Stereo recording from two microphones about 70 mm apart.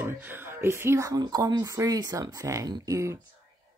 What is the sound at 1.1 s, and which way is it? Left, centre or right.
Speech, right.